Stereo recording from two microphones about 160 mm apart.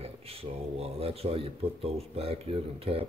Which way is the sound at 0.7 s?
40° right (ahead or behind).